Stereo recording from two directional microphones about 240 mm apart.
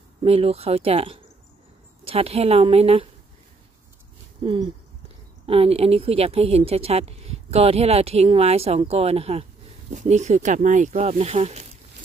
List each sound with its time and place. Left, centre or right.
0.2 s speech: right
4.5 s speech: right